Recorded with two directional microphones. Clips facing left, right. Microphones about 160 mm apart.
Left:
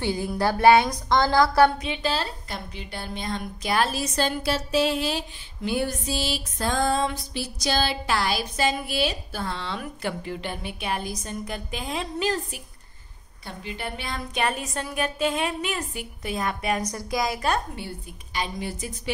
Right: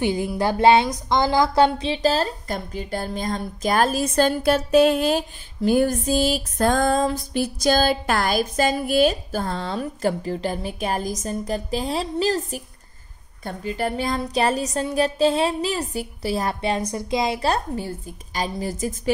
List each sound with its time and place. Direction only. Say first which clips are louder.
0.0 s a woman's voice: right 3 dB; 20° right (ahead or behind); by 19.1 s 45° right (ahead or behind)